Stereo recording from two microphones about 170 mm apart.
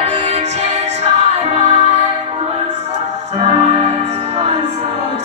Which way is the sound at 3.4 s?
35° right (ahead or behind).